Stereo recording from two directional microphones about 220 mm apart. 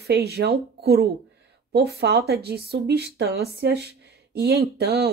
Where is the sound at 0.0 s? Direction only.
50° right (ahead or behind).